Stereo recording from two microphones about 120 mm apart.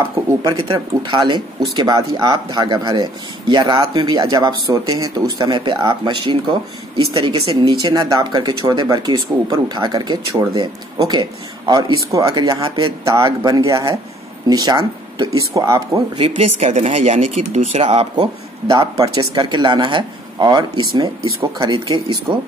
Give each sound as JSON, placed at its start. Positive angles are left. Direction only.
{"t": 0.4, "sound": "speech", "side_deg": -40}
{"t": 16.2, "sound": "speech", "side_deg": -60}
{"t": 18.1, "sound": "speech", "side_deg": -40}
{"t": 21.8, "sound": "speech", "side_deg": -30}